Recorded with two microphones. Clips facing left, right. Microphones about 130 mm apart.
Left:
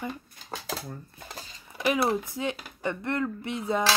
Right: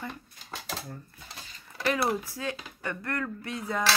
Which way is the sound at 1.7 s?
15° left (ahead or behind).